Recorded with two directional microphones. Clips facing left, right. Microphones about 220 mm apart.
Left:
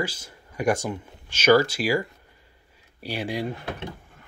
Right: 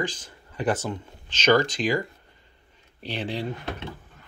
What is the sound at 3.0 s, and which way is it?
Speech, 10° left (ahead or behind).